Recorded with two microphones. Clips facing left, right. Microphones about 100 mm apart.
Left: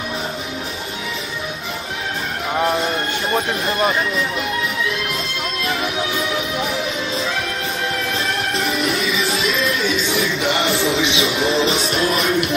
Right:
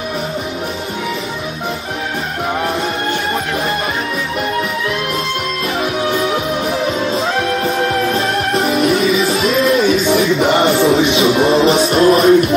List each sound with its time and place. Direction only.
9.4 s music: 45° right (ahead or behind)
11.1 s music: 35° right (ahead or behind)